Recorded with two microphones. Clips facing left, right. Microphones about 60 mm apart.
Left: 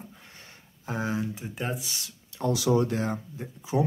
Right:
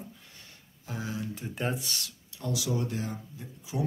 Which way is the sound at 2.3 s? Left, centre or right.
Left.